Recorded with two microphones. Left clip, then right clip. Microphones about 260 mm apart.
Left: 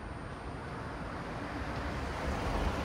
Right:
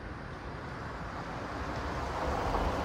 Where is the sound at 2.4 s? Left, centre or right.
Right.